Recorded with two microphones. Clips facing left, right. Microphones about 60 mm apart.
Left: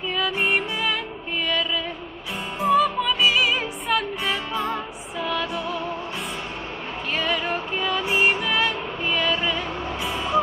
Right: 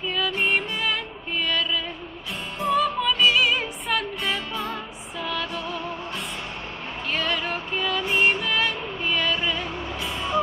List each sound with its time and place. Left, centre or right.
0.1 s music: centre
2.6 s music: centre
7.2 s a sound: centre
7.7 s music: centre
10.0 s vehicle: left